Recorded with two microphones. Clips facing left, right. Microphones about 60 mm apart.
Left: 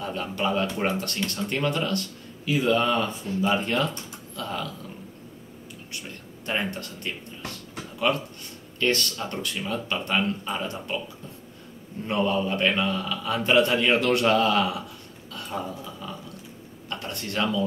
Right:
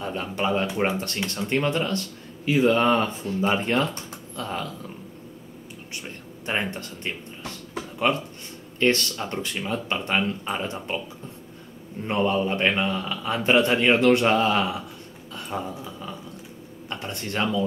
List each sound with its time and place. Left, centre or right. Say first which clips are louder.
0.0 s a man's voice: right 1 dB; right
6.0 s speech: right 1 dB; right
8.7 s a man's voice: right 3 dB; right
12.1 s a man's voice: right 2 dB; right
15.3 s a sound: right 1 dB; centre
16.9 s a man's voice: right 1 dB; right